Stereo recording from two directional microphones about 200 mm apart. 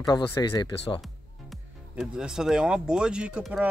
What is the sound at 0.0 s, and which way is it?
Speech, 20° left (ahead or behind).